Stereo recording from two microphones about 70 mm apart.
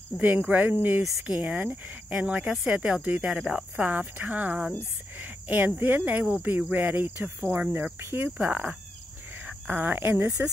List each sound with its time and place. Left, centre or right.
0.2 s speech: right
3.7 s speech: right
8.0 s insect: right
8.5 s speech: centre